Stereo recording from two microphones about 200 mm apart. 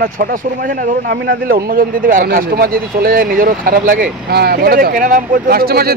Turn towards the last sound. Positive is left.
turn(degrees=-50)  # may be behind; listen again after turning